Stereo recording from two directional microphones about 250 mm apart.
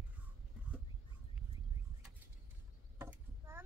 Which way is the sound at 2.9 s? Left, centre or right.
Centre.